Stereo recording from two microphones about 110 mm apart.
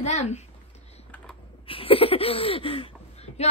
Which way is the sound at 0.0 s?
90° left.